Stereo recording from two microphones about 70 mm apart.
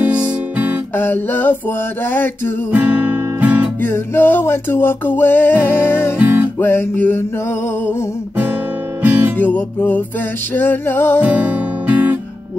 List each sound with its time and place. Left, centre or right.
0.9 s a sound: left
2.7 s guitar: right
3.8 s music: left
9.0 s music: right
9.4 s a sound: left
10.5 s music: left
11.1 s music: centre